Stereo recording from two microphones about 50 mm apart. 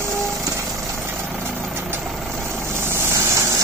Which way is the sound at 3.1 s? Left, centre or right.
Right.